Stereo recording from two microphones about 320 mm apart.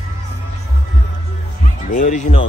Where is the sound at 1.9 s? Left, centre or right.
Left.